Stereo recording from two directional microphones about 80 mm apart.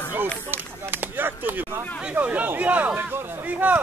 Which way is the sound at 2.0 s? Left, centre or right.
Centre.